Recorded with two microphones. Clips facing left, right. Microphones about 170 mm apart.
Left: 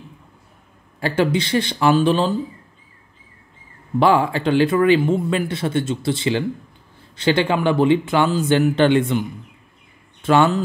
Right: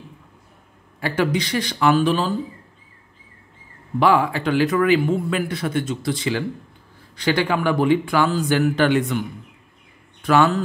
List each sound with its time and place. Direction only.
0.9 s speech: 30° left (ahead or behind)
4.0 s speech: 30° left (ahead or behind)
10.2 s speech: 25° left (ahead or behind)